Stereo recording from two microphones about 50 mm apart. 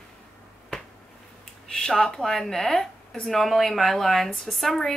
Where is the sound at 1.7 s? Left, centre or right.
Centre.